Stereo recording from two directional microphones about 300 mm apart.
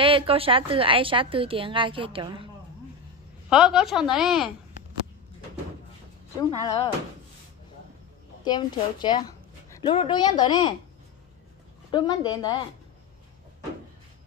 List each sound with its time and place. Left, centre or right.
0.0 s a woman's voice: centre
3.4 s a woman's voice: centre
6.6 s a woman's voice: centre
8.5 s a woman's voice: centre
11.9 s a woman's voice: centre